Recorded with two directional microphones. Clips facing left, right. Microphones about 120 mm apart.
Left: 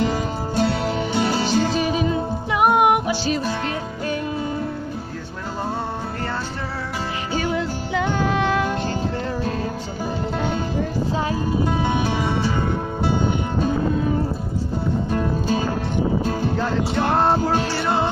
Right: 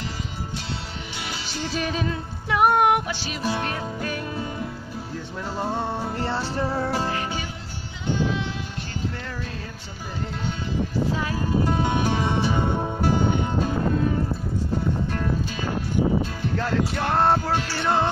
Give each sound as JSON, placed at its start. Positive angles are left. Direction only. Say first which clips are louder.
{"t": 0.6, "sound": "music", "louder": "left 13 dB", "side_deg": 50}
{"t": 1.8, "sound": "music", "louder": "left 6 dB", "side_deg": 10}
{"t": 7.5, "sound": "music", "louder": "left 15 dB", "side_deg": 75}
{"t": 16.6, "sound": "music", "louder": "left 1 dB", "side_deg": 25}
{"t": 17.7, "sound": "music", "louder": "left 1 dB", "side_deg": 10}